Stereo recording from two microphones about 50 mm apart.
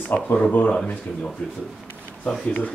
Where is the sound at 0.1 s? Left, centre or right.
Left.